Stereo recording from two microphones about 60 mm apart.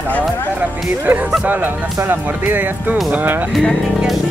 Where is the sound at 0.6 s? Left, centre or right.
Right.